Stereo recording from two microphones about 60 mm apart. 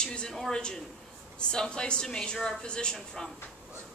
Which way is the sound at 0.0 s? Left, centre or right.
Centre.